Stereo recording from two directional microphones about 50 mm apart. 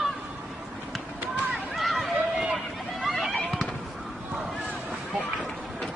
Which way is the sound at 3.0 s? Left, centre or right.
Centre.